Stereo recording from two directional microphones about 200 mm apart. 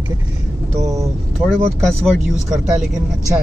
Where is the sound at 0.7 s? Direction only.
15° right (ahead or behind).